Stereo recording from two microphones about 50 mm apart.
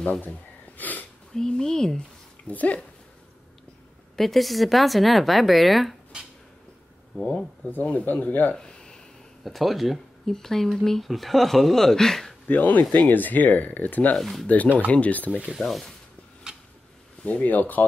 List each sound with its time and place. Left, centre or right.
0.2 s gasp: left
1.3 s speech: centre
2.4 s speech: left
4.2 s speech: centre
7.2 s speech: centre
7.8 s speech: left
8.5 s a sound: centre
9.4 s speech: centre
12.4 s speech: left
14.1 s speech: centre
14.5 s speech: left
15.6 s speech: centre
17.2 s speech: left